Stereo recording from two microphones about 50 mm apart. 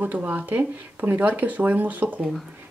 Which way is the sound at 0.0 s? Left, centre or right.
Right.